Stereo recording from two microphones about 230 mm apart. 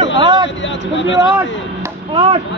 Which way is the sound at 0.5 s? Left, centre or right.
Left.